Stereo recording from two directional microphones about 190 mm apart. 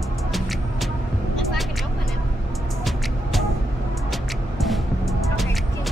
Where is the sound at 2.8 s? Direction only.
Centre (ahead or behind).